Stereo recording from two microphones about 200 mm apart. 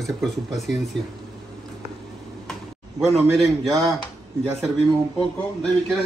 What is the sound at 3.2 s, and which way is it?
Speech, centre (ahead or behind).